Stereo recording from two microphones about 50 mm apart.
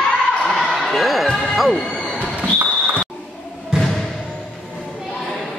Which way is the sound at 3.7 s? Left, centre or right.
Centre.